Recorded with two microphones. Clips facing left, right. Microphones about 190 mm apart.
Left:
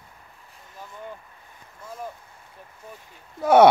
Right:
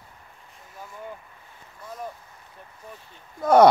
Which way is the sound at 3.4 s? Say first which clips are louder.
Left 1 dB; 5° left (ahead or behind).